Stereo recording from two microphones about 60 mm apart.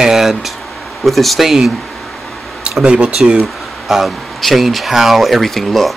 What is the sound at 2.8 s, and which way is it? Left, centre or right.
Speech, centre.